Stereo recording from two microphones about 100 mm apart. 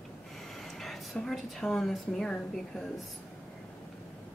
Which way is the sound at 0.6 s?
5° left (ahead or behind).